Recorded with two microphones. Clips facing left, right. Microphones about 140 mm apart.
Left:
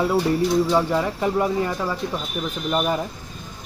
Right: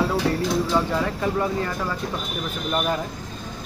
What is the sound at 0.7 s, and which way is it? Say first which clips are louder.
Speech: left 2 dB; 15° left (ahead or behind).